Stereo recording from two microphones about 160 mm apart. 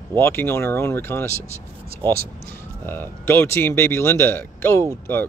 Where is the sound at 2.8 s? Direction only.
15° left (ahead or behind).